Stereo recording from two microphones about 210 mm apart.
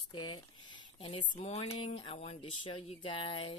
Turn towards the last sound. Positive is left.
turn(degrees=25)  # may be behind; listen again after turning